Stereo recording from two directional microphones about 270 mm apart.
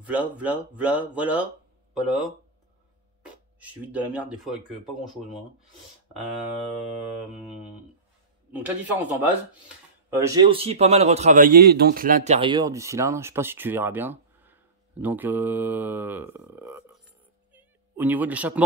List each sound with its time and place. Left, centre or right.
0.0 s speech: centre
3.5 s speech: centre
8.5 s a man's voice: centre; by 12.4 s right
12.4 s speech: centre
17.5 s music: centre